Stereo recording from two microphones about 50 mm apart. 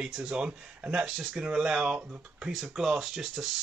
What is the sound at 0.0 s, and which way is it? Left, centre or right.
Speech, centre.